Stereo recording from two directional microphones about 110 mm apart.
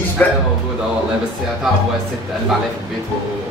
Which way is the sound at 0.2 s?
10° left (ahead or behind).